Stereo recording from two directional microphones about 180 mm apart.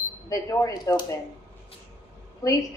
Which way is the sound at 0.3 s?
20° left (ahead or behind).